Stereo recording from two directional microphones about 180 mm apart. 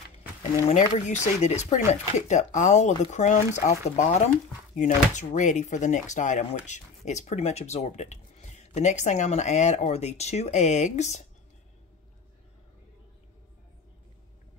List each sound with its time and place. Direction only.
0.7 s speech: 40° left (ahead or behind)